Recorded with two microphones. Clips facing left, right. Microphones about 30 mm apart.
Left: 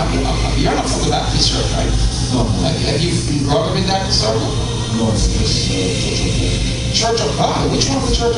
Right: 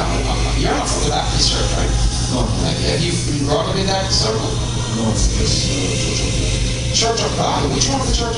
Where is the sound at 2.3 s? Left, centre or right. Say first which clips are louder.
Left 3 dB; centre.